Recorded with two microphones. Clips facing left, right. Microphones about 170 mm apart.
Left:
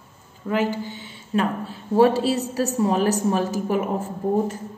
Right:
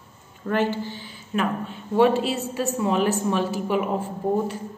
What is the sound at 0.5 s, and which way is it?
Speech, 10° left (ahead or behind).